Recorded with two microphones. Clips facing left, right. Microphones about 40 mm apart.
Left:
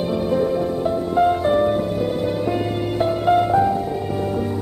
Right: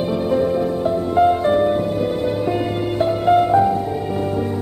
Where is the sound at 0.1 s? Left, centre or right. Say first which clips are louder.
Right 1 dB; centre.